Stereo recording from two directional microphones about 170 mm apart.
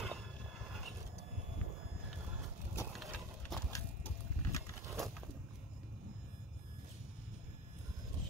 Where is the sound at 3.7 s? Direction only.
20° left (ahead or behind).